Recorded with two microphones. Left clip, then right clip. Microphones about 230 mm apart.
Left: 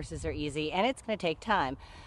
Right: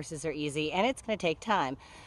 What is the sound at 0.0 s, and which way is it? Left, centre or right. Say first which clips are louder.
Speech: right 1 dB; centre.